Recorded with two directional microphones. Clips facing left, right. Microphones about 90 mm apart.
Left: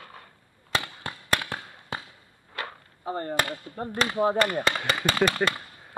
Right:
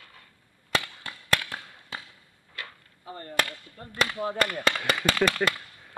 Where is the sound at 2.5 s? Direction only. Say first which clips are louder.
Left 6 dB; 45° left (ahead or behind).